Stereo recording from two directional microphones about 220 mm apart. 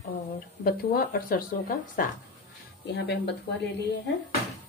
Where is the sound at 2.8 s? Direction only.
50° left (ahead or behind).